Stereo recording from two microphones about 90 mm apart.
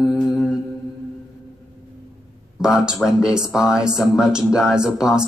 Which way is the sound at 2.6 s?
10° right (ahead or behind).